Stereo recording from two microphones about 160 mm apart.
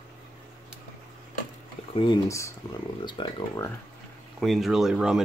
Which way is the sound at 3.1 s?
30° left (ahead or behind).